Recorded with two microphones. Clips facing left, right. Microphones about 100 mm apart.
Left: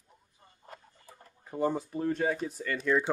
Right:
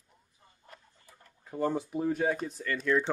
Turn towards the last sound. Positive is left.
turn(degrees=5)  # may be behind; listen again after turning